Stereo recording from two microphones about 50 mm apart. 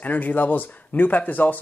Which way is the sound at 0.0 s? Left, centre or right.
Left.